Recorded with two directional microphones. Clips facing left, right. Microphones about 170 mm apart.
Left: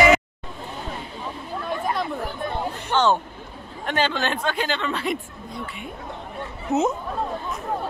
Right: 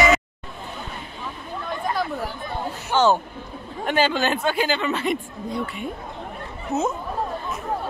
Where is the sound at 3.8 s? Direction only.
5° right (ahead or behind).